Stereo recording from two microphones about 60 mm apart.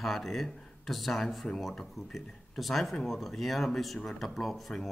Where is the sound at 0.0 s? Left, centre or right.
Centre.